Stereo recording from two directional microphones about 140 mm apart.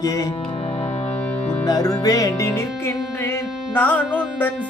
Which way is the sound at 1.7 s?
25° left (ahead or behind).